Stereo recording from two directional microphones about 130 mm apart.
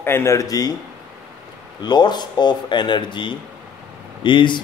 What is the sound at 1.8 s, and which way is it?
Speech, 35° left (ahead or behind).